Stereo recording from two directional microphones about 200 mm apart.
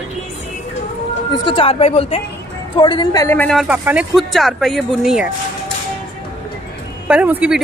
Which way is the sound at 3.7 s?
5° right (ahead or behind).